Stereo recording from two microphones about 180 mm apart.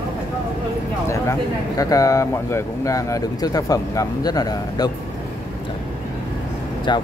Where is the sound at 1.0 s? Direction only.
15° left (ahead or behind).